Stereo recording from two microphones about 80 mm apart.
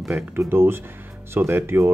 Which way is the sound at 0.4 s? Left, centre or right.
Right.